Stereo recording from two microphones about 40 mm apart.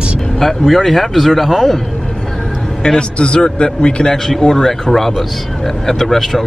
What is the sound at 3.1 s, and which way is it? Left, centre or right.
A man's voice, left.